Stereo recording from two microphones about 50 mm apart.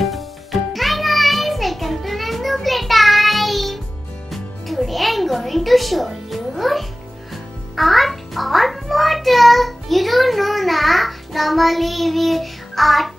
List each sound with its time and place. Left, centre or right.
0.0 s music: centre